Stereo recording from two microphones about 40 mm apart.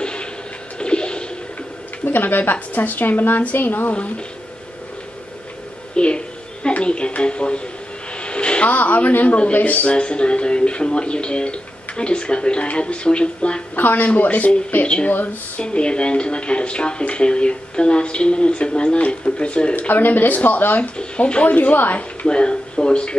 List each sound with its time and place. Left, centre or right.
0.0 s a sound: left
2.0 s a woman's voice: left
5.9 s speech: left
8.2 s a sound: left
8.6 s speech: left
9.9 s speech: left
13.7 s a woman's voice: left
14.0 s speech: left
15.6 s speech: left
19.9 s a woman's voice: left
20.9 s speech: left
21.5 s a woman's voice: left
22.2 s speech: left